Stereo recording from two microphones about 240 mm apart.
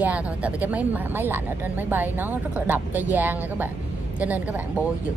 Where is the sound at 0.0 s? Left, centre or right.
Centre.